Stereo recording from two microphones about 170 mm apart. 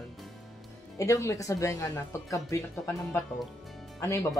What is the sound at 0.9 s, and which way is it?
Speech, 20° left (ahead or behind).